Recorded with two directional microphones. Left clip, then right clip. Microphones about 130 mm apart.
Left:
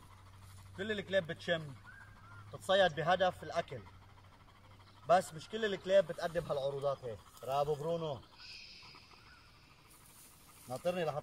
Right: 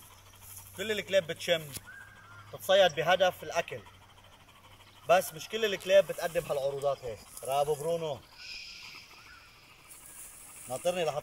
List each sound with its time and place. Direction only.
0.7 s speech: 20° right (ahead or behind)
5.0 s speech: 20° right (ahead or behind)
7.8 s a sound: 15° right (ahead or behind)
10.7 s speech: 20° right (ahead or behind)